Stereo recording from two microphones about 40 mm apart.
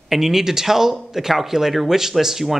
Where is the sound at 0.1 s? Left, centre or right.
Centre.